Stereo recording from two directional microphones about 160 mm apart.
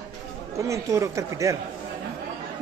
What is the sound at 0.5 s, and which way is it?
A man's voice, 20° right (ahead or behind).